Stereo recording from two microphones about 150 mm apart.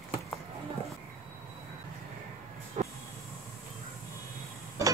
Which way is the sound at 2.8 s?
50° right (ahead or behind).